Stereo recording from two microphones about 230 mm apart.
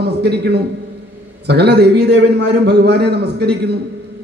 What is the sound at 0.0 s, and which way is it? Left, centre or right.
A man's voice, right.